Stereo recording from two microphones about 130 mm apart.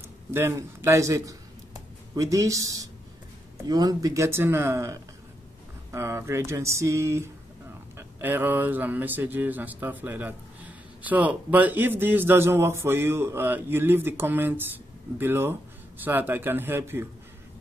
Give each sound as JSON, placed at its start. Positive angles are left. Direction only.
{"t": 0.3, "sound": "speech", "side_deg": -20}